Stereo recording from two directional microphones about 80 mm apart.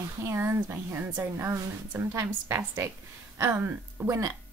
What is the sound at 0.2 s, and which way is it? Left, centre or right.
Speech, right.